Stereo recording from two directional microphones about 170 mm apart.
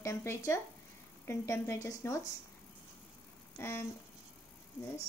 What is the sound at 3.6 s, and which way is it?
Speech, 15° left (ahead or behind).